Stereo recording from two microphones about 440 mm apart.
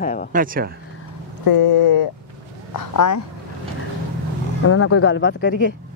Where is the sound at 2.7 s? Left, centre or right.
Left.